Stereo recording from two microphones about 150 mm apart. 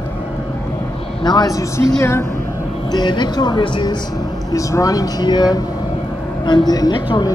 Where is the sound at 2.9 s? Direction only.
30° left (ahead or behind).